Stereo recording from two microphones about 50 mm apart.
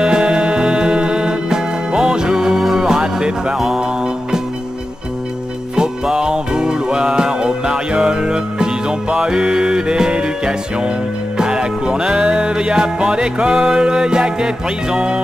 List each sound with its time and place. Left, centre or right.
0.0 s music: centre
3.5 s music: centre
3.8 s music: centre
6.0 s music: centre